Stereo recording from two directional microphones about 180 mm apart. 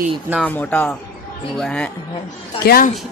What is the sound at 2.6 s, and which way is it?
Speech, 55° left (ahead or behind).